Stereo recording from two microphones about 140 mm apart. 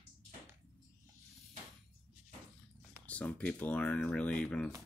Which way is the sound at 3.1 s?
10° left (ahead or behind).